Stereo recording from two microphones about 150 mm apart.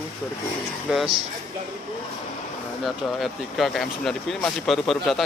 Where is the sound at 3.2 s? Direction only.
Centre (ahead or behind).